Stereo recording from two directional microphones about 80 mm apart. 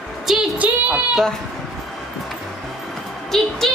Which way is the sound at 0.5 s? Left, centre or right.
Centre.